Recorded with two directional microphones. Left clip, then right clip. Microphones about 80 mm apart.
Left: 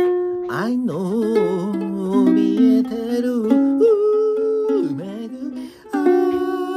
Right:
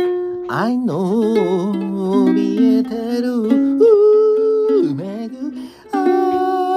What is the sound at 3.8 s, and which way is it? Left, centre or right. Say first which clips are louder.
Music: right 6 dB; right.